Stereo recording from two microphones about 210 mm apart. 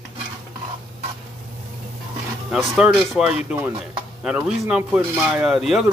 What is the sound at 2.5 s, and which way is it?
Speech, centre (ahead or behind).